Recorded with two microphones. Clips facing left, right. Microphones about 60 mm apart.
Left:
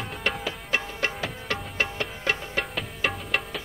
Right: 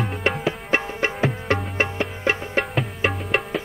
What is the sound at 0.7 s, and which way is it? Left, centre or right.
Music, right.